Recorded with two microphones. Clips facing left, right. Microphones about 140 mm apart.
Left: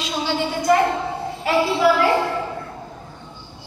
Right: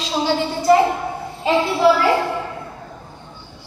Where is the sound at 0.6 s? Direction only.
10° right (ahead or behind).